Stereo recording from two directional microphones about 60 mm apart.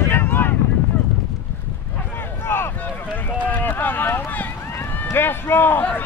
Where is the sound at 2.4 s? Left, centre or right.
Left.